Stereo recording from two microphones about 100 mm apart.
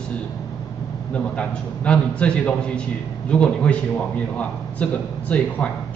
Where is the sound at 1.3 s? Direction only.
10° left (ahead or behind).